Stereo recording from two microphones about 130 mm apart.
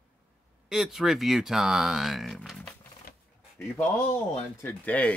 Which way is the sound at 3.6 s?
20° left (ahead or behind).